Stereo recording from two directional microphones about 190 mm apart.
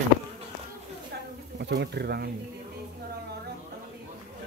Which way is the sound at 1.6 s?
65° right (ahead or behind).